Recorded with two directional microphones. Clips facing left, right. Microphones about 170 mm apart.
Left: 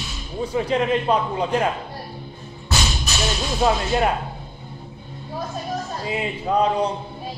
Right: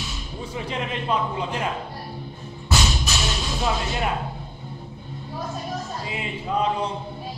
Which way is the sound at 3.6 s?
45° left (ahead or behind).